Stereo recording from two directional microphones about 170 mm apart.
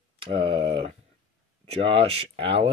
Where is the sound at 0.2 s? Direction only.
30° right (ahead or behind).